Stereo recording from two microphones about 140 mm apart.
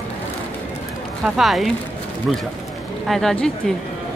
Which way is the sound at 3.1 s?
5° left (ahead or behind).